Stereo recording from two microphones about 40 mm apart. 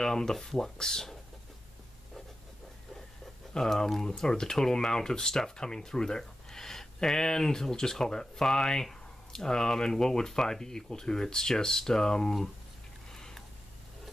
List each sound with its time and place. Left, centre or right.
0.0 s speech: centre
3.5 s speech: centre
13.1 s a sound: centre